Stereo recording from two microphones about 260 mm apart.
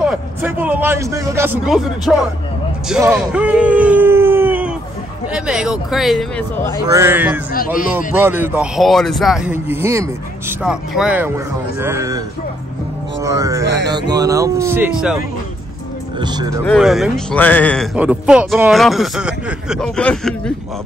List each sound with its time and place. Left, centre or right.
0.0 s a man's voice: centre
6.8 s a man's voice: centre
7.5 s a man's voice: left
8.1 s a man's voice: centre
13.2 s a man's voice: centre
13.7 s music: right
13.9 s a man's voice: centre
16.2 s a man's voice: centre
16.6 s speech: centre